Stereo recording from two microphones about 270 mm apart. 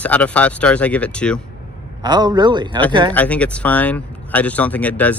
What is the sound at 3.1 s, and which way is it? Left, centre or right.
Speech, centre.